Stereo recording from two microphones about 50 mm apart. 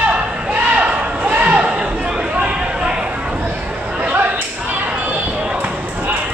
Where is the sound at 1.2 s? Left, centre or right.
Right.